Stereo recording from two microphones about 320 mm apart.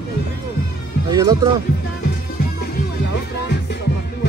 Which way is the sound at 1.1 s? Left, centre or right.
Centre.